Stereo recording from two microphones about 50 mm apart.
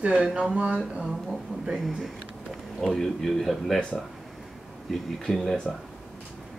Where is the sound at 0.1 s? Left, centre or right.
Centre.